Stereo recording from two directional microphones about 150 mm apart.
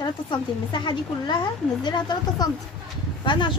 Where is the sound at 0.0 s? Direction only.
30° left (ahead or behind).